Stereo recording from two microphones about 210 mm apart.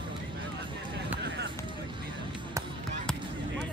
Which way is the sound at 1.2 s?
55° right (ahead or behind).